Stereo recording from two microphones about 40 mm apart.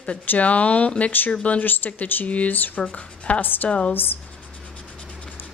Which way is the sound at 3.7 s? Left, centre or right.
Left.